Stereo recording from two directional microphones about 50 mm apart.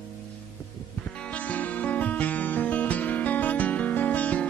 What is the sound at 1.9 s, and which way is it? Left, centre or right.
Music, left.